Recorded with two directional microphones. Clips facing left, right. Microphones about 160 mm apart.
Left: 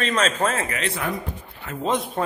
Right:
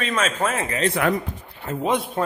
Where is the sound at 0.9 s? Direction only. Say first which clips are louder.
Right 6 dB; 75° right (ahead or behind).